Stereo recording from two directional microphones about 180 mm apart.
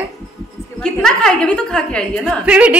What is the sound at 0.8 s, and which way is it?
A woman's voice, 5° left (ahead or behind).